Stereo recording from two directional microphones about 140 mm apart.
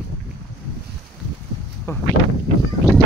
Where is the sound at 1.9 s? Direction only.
20° left (ahead or behind).